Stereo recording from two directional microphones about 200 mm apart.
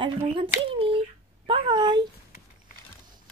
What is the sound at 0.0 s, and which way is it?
Speech, 25° right (ahead or behind).